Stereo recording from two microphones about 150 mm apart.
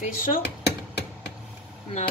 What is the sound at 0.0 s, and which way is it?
Speech, 65° left (ahead or behind).